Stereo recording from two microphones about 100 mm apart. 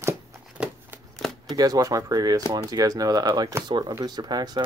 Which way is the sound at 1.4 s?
40° right (ahead or behind).